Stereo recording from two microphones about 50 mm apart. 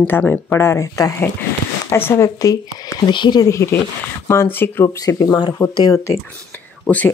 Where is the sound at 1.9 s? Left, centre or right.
Left.